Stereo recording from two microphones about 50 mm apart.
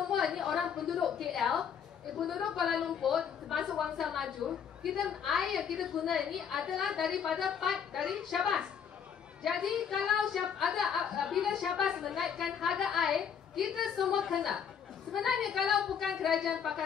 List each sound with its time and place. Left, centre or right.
0.3 s a sound: centre
2.7 s a woman's voice: centre
9.5 s a woman's voice: centre